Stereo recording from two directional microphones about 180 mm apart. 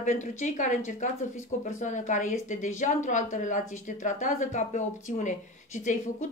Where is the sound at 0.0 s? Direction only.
45° left (ahead or behind).